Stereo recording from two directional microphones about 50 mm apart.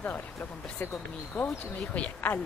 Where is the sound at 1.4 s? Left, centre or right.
Left.